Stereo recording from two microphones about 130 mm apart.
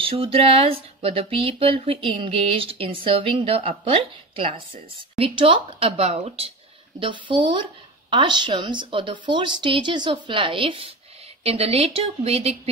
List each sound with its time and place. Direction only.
0.0 s speech: 45° right (ahead or behind)
7.0 s speech: 40° right (ahead or behind)